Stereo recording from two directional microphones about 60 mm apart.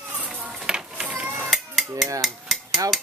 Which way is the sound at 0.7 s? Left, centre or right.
Centre.